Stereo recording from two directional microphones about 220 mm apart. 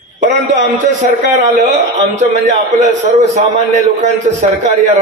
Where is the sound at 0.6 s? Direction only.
35° right (ahead or behind).